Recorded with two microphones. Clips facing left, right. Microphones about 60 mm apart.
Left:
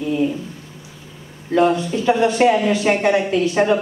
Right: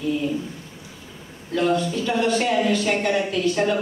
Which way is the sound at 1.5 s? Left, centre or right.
Left.